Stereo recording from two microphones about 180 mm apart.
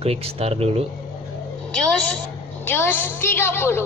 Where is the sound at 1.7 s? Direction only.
5° left (ahead or behind).